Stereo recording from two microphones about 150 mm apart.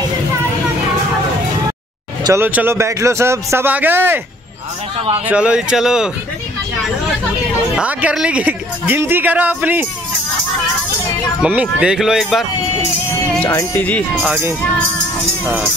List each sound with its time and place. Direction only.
2.2 s speech: 15° right (ahead or behind)
5.2 s speech: 5° right (ahead or behind)
7.7 s speech: 5° right (ahead or behind)
11.4 s speech: 5° right (ahead or behind)
13.4 s speech: 15° left (ahead or behind)
14.2 s speech: 10° right (ahead or behind)